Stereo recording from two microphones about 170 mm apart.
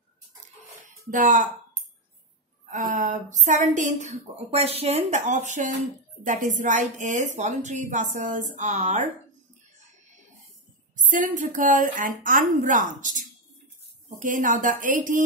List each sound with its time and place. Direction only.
0.8 s speech: 50° right (ahead or behind)
2.6 s a woman's voice: 50° right (ahead or behind)
11.0 s a woman's voice: 50° right (ahead or behind)
14.0 s a woman's voice: 50° right (ahead or behind)